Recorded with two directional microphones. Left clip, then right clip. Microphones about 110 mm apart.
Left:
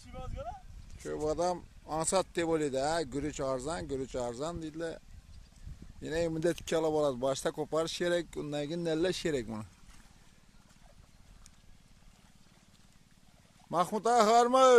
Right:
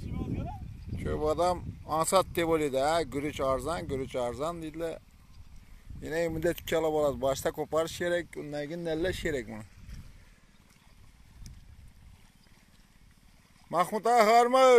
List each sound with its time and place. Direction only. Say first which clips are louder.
1.0 s speech: right 4 dB; 5° right (ahead or behind)
6.0 s speech: right 2 dB; 25° left (ahead or behind)
8.0 s speech: right 1 dB; 35° left (ahead or behind)
9.3 s speech: right 1 dB; 60° left (ahead or behind)
14.0 s speech: right 3 dB; 25° left (ahead or behind)